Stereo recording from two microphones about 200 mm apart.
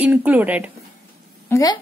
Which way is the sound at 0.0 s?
5° right (ahead or behind).